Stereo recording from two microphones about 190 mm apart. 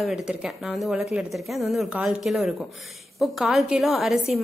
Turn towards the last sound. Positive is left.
turn(degrees=0)  # may be behind; listen again after turning